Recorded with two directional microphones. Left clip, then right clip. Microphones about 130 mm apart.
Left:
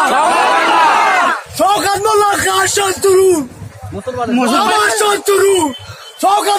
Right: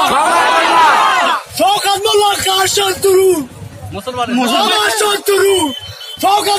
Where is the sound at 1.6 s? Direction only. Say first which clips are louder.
Even; 15° left (ahead or behind).